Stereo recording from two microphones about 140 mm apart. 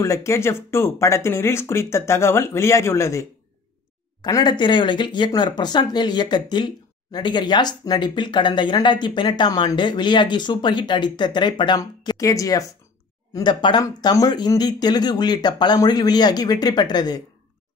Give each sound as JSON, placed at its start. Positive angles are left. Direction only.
{"t": 0.0, "sound": "speech", "side_deg": 20}
{"t": 4.2, "sound": "speech", "side_deg": 30}